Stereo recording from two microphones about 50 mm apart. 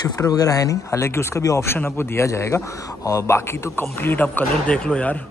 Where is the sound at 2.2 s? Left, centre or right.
Left.